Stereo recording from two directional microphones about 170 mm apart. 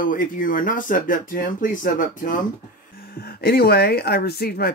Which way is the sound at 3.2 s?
65° left (ahead or behind).